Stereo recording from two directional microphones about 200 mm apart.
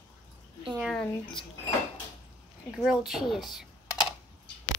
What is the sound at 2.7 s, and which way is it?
Speech, centre (ahead or behind).